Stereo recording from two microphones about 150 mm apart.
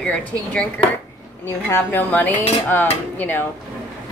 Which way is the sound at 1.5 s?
15° left (ahead or behind).